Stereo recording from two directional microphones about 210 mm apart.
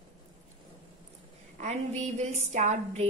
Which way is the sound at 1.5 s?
35° right (ahead or behind).